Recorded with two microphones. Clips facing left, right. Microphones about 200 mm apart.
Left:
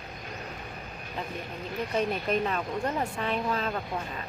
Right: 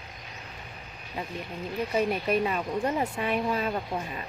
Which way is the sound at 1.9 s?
5° right (ahead or behind).